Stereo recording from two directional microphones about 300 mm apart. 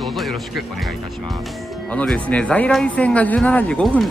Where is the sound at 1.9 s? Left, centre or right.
Centre.